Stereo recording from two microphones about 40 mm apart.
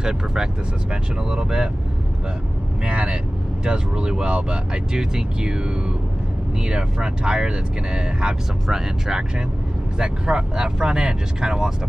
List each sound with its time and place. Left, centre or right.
0.0 s speech: centre
2.8 s speech: right